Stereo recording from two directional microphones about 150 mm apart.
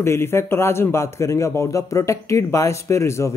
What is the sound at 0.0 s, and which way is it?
A man's voice, 15° left (ahead or behind).